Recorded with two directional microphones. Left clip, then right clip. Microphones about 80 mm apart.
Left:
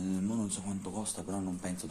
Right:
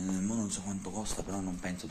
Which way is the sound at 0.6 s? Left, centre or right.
Left.